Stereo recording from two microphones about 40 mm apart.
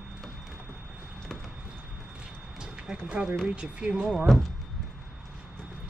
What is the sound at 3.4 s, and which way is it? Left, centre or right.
Speech, right.